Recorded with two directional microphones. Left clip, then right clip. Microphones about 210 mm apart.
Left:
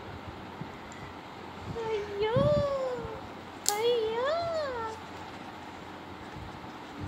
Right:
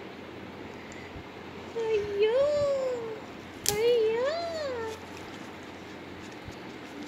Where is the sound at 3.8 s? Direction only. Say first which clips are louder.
Right 4 dB; 25° left (ahead or behind).